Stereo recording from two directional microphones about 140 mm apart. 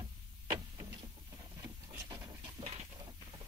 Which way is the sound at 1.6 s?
20° right (ahead or behind).